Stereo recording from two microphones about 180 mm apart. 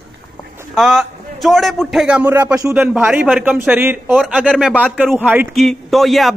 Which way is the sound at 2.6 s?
15° right (ahead or behind).